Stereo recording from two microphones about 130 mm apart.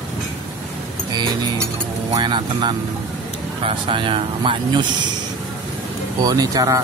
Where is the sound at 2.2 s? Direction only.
35° right (ahead or behind).